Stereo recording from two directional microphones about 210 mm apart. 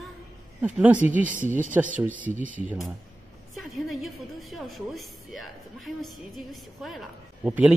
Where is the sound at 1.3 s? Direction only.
40° right (ahead or behind).